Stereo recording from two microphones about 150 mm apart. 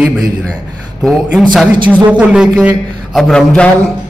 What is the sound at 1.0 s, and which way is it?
Speech, centre (ahead or behind).